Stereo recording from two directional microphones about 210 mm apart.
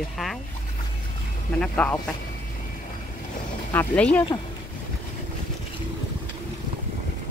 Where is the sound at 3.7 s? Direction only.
10° left (ahead or behind).